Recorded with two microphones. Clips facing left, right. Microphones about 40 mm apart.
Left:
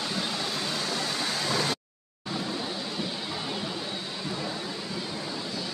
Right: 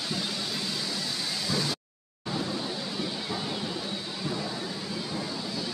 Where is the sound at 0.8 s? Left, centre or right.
Left.